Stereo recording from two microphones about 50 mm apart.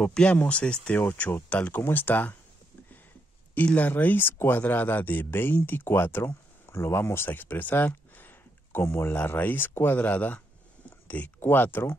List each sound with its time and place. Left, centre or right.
0.0 s speech: left
1.3 s speech: left
1.8 s speech: left
3.6 s speech: left
3.9 s speech: left
9.1 s speech: left
10.9 s a sound: left
11.3 s speech: left